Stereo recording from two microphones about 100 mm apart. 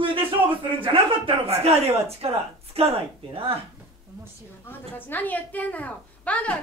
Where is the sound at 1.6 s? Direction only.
85° right.